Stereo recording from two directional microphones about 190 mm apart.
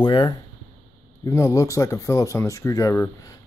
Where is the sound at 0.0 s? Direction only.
25° left (ahead or behind).